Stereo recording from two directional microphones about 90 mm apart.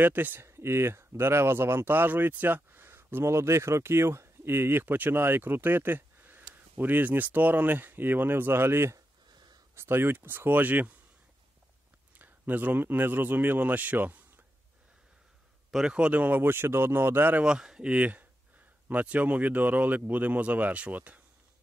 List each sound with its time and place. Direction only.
0.0 s speech: 20° right (ahead or behind)
9.3 s a sound: 50° right (ahead or behind)
9.8 s speech: 25° right (ahead or behind)
12.2 s speech: 20° right (ahead or behind)
15.7 s speech: 10° right (ahead or behind)
17.5 s speech: 10° right (ahead or behind)